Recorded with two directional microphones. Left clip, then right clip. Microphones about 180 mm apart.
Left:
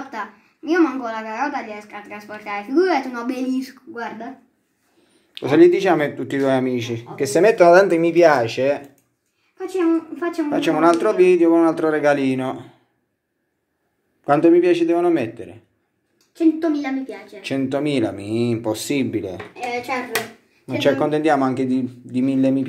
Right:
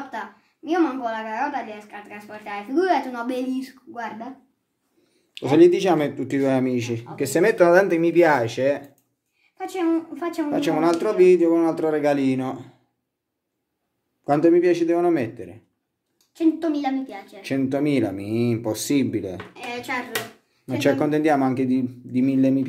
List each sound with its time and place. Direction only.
0.7 s a woman's voice: centre (ahead or behind)
5.3 s speech: 20° right (ahead or behind)
9.8 s a woman's voice: 35° right (ahead or behind)
10.5 s speech: 10° right (ahead or behind)
14.2 s speech: 15° right (ahead or behind)